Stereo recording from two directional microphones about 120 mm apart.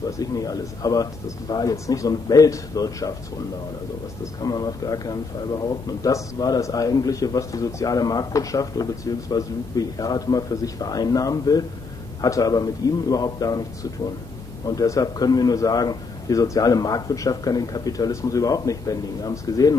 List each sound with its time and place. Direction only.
0.2 s a man's voice: 30° left (ahead or behind)
4.4 s a man's voice: 30° left (ahead or behind)
14.8 s a man's voice: 30° left (ahead or behind)